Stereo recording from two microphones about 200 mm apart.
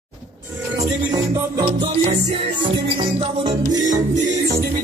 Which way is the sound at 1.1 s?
20° right (ahead or behind).